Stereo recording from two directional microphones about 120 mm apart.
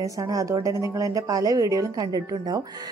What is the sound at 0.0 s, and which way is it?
A woman's voice, 30° right (ahead or behind).